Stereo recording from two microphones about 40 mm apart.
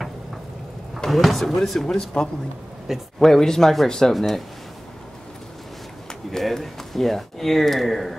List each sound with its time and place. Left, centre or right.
0.9 s speech: centre
3.2 s speech: centre
6.3 s speech: centre